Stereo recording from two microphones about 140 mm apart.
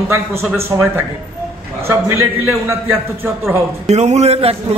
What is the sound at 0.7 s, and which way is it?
A man's voice, 25° right (ahead or behind).